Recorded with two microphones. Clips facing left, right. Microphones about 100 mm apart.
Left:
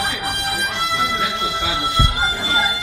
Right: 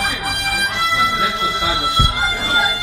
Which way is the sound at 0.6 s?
15° right (ahead or behind).